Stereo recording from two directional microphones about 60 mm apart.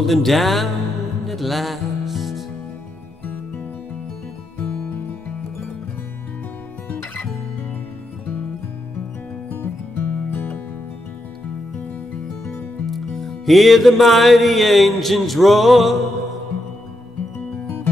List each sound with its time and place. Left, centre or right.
0.0 s music: centre
4.6 s music: centre
6.9 s music: left
9.5 s music: left
12.8 s music: centre